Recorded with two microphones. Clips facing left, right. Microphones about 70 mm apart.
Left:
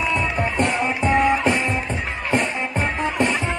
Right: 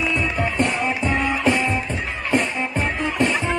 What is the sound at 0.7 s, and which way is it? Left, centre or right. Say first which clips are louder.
Music: left 2 dB; left.